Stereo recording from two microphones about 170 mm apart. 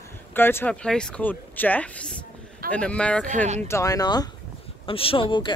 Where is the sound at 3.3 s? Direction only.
45° right (ahead or behind).